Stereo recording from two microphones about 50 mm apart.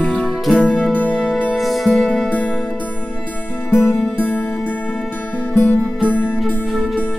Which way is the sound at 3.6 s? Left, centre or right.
Left.